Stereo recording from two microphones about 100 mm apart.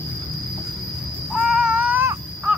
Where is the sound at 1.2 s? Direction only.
5° right (ahead or behind).